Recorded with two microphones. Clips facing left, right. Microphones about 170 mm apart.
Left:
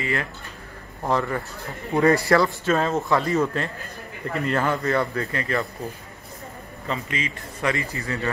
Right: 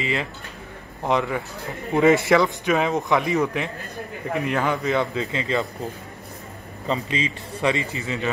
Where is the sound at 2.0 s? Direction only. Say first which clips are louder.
Right 1 dB; 20° right (ahead or behind).